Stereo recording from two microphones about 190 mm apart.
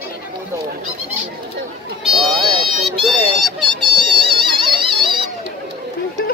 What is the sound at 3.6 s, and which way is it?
Music, 25° right (ahead or behind).